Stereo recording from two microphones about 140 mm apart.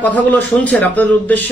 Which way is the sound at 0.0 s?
10° left (ahead or behind).